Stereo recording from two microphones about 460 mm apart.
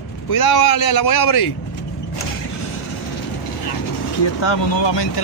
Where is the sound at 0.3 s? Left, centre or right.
Left.